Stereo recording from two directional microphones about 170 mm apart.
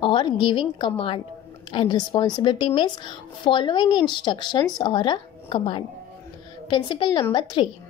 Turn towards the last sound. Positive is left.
turn(degrees=30)  # may be behind; listen again after turning